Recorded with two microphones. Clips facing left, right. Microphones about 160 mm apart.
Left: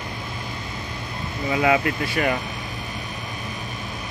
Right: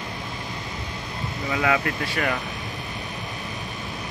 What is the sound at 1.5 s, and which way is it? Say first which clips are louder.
Speech: left 4 dB; 15° left (ahead or behind).